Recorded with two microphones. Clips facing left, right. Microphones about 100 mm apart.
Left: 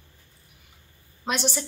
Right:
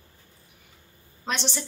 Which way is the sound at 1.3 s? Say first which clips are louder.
Left 3 dB; 10° left (ahead or behind).